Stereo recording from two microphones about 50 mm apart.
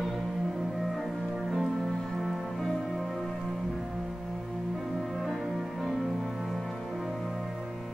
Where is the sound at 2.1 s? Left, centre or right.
Centre.